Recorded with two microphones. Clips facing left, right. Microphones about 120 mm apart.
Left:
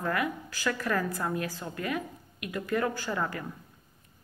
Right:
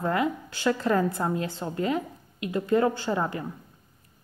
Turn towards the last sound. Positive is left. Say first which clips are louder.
# right 4 dB
turn(degrees=-25)  # may be behind; listen again after turning